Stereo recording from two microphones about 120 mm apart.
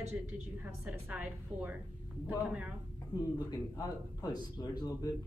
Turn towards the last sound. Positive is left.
turn(degrees=35)  # may be behind; listen again after turning